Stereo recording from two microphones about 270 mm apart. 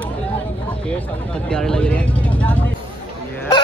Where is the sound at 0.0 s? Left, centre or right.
Centre.